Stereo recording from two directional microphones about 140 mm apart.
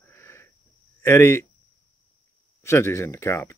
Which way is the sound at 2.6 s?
20° left (ahead or behind).